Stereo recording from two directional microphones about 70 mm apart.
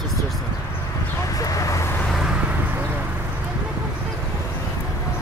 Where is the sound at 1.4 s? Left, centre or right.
Left.